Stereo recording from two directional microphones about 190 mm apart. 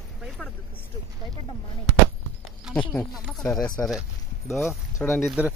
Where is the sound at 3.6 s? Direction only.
20° left (ahead or behind).